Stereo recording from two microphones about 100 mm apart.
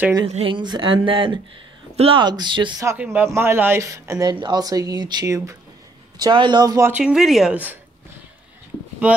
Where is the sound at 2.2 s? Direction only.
45° right (ahead or behind).